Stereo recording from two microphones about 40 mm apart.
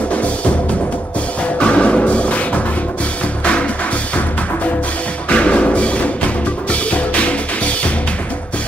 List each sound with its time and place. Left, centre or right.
1.6 s music: left
5.3 s music: left